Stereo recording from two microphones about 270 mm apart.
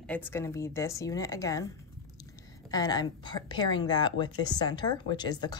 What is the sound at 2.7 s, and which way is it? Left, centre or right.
A woman's voice, centre.